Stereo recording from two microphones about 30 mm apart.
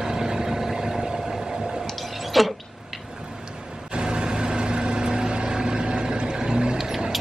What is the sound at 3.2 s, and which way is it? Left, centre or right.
Vehicle, right.